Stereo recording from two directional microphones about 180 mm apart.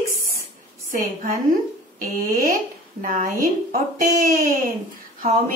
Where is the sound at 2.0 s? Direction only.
50° right (ahead or behind).